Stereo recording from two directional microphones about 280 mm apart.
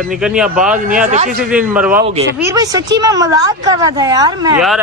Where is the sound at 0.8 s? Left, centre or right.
Right.